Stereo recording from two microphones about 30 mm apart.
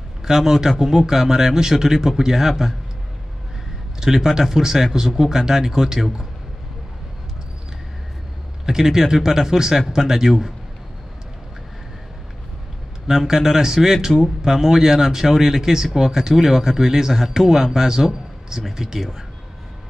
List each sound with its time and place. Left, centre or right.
0.2 s speech: centre
4.0 s speech: centre
8.6 s speech: centre
13.0 s a man's voice: centre